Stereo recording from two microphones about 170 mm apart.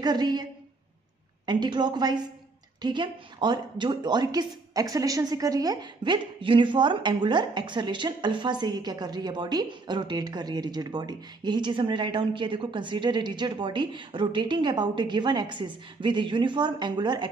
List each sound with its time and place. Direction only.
0.0 s a woman's voice: 25° right (ahead or behind)